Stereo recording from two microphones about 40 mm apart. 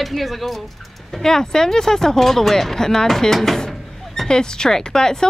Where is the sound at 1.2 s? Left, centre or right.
Centre.